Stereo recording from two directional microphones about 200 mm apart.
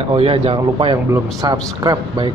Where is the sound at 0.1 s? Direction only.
25° right (ahead or behind).